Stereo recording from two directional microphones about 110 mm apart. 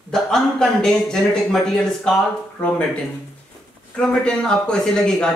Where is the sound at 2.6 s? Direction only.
15° left (ahead or behind).